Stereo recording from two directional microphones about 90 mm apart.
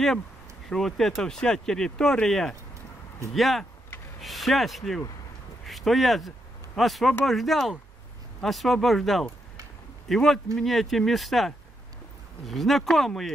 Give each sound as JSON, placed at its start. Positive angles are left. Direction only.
{"t": 0.7, "sound": "speech", "side_deg": 5}